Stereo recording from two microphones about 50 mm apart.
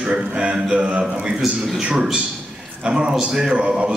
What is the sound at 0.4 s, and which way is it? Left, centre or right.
Speech, centre.